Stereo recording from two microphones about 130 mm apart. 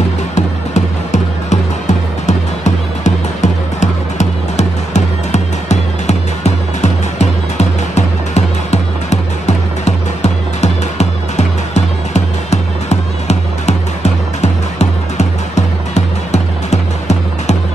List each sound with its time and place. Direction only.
0.7 s music: 65° left (ahead or behind)